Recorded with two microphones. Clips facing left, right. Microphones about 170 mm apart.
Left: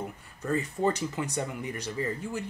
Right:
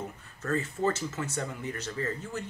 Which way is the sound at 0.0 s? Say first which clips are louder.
Left 2 dB; 15° left (ahead or behind).